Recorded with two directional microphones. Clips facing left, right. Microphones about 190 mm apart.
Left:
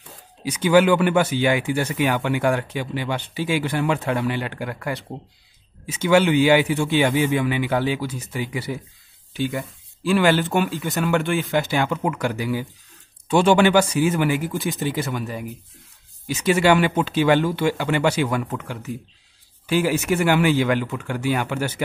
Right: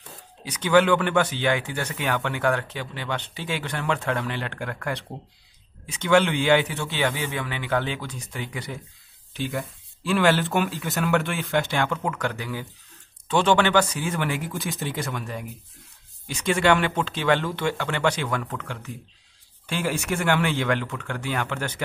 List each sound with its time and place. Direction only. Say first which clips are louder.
0.5 s speech: left 3 dB; 10° left (ahead or behind)